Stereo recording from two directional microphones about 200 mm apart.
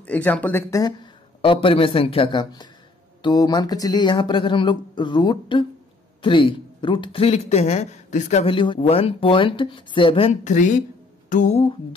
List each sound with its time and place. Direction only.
0.0 s speech: 10° left (ahead or behind); by 10.8 s 40° left (ahead or behind)
11.2 s music: 40° left (ahead or behind)